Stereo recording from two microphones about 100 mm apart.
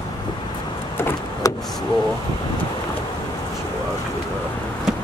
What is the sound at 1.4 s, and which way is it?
Vehicle, 35° left (ahead or behind).